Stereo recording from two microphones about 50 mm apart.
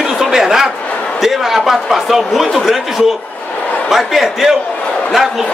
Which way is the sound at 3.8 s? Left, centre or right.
Centre.